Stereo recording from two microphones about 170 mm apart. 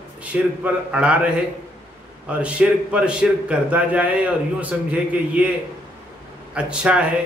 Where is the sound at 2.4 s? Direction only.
5° right (ahead or behind).